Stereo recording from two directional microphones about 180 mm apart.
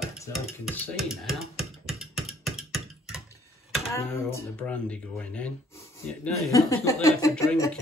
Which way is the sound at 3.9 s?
15° left (ahead or behind).